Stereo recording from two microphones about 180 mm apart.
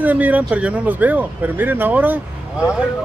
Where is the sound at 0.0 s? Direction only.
10° right (ahead or behind).